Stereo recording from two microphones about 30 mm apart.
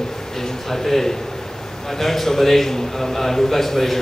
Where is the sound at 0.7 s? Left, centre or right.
Centre.